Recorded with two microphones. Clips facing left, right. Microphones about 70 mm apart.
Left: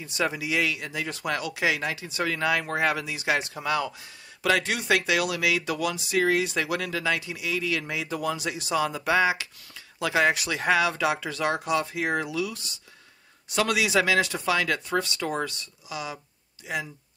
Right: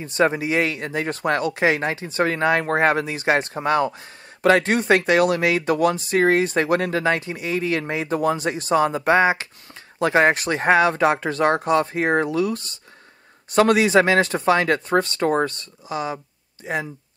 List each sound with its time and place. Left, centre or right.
0.0 s speech: right